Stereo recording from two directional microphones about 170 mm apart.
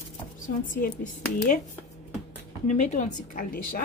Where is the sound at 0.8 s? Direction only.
50° left (ahead or behind).